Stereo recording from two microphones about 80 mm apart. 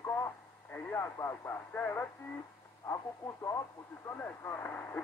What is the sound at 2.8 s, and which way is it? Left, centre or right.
Speech, left.